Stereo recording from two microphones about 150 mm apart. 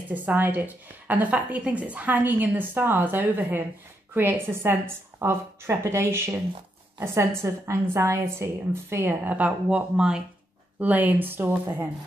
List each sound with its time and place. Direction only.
0.1 s a woman's voice: 10° right (ahead or behind)